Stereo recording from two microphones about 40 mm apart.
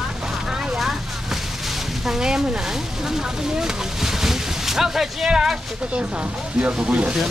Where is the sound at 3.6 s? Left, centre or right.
Centre.